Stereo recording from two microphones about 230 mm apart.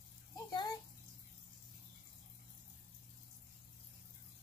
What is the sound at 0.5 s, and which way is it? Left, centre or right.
Bathtub, centre.